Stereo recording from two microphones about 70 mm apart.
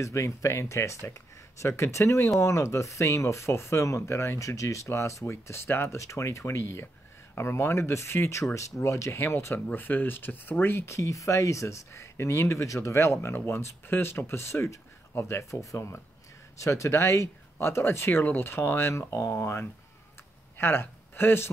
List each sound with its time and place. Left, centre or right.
0.0 s speech: left
9.7 s speech: left
11.0 s a man's voice: left